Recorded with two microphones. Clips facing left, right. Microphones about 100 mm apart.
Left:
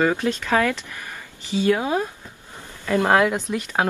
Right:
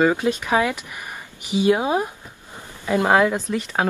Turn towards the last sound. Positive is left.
turn(degrees=15)  # may be behind; listen again after turning